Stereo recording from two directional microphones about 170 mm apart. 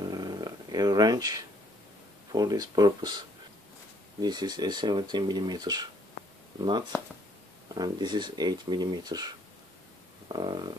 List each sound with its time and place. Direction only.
0.0 s dog: 25° right (ahead or behind)
2.3 s speech: 25° right (ahead or behind)
4.2 s speech: 25° right (ahead or behind)
10.2 s stomach rumble: 25° right (ahead or behind)